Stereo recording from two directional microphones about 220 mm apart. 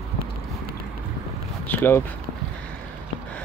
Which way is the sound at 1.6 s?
10° left (ahead or behind).